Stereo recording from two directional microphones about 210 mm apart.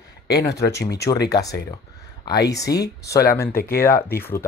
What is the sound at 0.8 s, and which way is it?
Speech, 50° left (ahead or behind).